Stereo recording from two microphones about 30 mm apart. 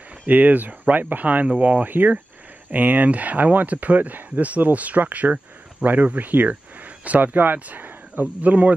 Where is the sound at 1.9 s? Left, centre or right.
Right.